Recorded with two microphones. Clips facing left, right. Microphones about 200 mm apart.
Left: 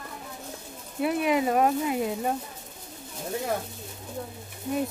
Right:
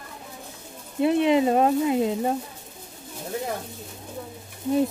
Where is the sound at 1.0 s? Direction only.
25° right (ahead or behind).